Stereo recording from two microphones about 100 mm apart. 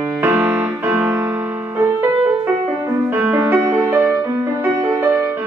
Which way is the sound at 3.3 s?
20° right (ahead or behind).